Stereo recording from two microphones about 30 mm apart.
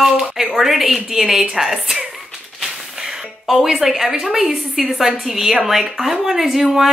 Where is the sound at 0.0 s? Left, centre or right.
Centre.